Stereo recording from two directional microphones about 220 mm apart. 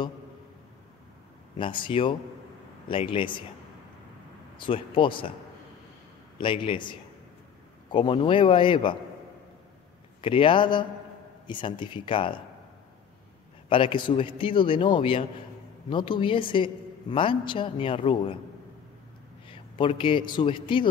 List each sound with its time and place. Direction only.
1.6 s a man's voice: 20° left (ahead or behind)
4.6 s a man's voice: 25° left (ahead or behind)
6.3 s a man's voice: 25° left (ahead or behind)
10.2 s a man's voice: 25° left (ahead or behind)
13.7 s a man's voice: 25° left (ahead or behind)
19.4 s a man's voice: 25° left (ahead or behind)